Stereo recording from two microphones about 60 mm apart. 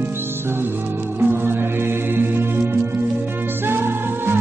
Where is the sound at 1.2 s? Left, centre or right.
Right.